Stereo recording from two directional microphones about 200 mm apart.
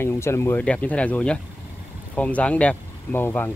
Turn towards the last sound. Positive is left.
turn(degrees=10)  # may be behind; listen again after turning